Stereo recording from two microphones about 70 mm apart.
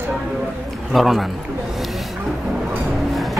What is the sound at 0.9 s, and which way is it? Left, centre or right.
Speech, centre.